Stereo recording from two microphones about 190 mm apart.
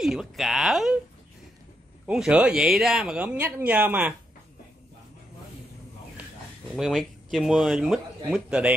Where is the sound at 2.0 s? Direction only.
5° right (ahead or behind).